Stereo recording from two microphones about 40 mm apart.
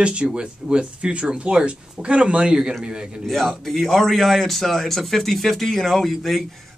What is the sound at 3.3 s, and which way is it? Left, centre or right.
A man's voice, centre.